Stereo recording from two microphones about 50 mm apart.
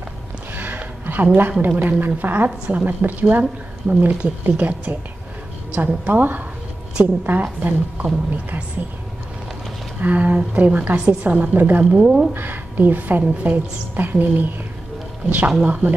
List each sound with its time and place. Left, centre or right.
0.6 s a sound: right
1.8 s a woman's voice: right
9.9 s a woman's voice: right
11.9 s speech: centre
12.4 s a woman's voice: right
15.6 s speech: right